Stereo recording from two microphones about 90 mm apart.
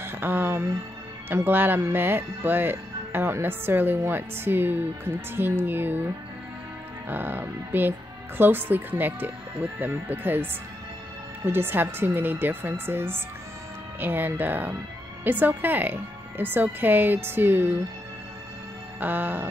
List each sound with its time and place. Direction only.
0.0 s speech: 20° right (ahead or behind)
7.1 s speech: 20° right (ahead or behind)
18.9 s speech: 20° right (ahead or behind)